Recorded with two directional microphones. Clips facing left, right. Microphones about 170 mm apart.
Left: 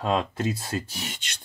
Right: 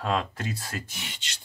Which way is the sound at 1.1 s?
55° left (ahead or behind).